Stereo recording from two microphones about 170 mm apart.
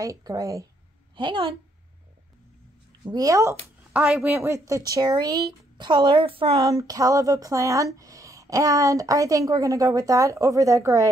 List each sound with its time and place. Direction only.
0.0 s a woman's voice: 20° right (ahead or behind)
3.1 s speech: 20° right (ahead or behind)
3.9 s speech: 5° right (ahead or behind); by 6.6 s 30° right (ahead or behind)
6.6 s speech: 20° right (ahead or behind)